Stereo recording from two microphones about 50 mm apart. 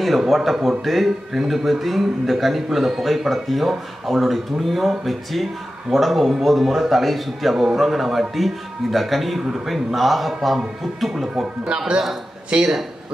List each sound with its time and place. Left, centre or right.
0.2 s a man's voice: centre